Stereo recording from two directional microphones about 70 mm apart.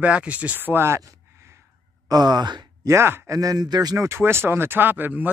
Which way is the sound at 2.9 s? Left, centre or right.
Right.